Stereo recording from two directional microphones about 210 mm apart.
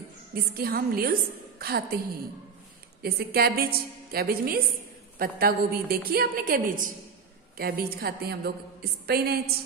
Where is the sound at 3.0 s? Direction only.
45° right (ahead or behind).